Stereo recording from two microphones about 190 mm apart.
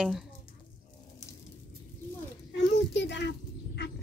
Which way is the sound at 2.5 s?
70° left (ahead or behind).